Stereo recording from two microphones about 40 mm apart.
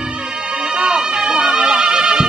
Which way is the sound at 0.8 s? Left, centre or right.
Right.